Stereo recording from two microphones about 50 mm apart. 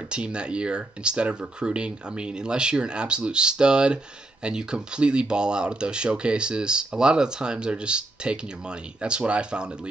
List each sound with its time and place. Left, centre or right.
0.1 s speech: centre